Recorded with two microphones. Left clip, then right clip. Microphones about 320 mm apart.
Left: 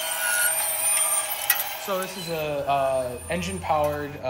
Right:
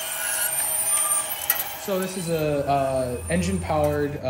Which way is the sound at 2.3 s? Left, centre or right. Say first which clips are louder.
Right 2 dB; centre.